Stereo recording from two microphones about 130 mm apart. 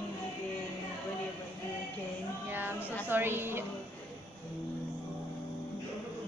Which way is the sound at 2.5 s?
15° right (ahead or behind).